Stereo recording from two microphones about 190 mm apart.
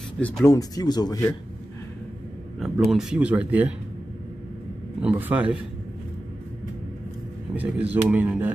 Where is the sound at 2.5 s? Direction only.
Centre (ahead or behind).